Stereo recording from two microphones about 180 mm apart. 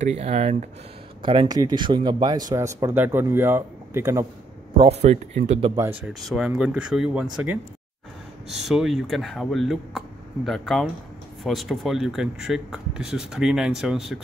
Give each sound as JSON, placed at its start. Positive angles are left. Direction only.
{"t": 0.0, "sound": "speech", "side_deg": -35}
{"t": 1.2, "sound": "speech", "side_deg": -30}
{"t": 4.7, "sound": "speech", "side_deg": -35}
{"t": 6.0, "sound": "speech", "side_deg": 0}
{"t": 8.5, "sound": "speech", "side_deg": 0}